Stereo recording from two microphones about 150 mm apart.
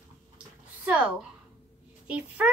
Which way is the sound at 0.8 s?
10° right (ahead or behind).